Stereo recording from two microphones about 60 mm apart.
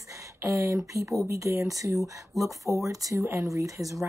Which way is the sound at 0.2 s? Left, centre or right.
Right.